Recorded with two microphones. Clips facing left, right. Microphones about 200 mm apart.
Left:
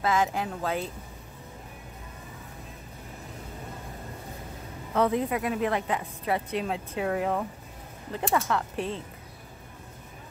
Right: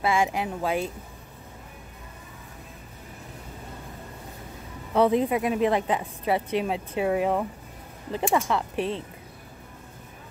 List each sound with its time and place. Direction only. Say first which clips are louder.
0.0 s a woman's voice: right 2 dB; 10° right (ahead or behind)
5.1 s a woman's voice: right 4 dB; 20° right (ahead or behind)